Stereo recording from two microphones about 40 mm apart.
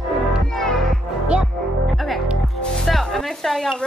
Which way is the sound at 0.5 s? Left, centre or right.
Centre.